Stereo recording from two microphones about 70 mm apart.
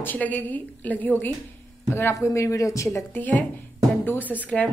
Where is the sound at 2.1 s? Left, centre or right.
Left.